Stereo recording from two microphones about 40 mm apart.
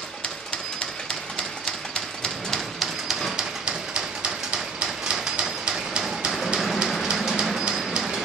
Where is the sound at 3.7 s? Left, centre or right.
Right.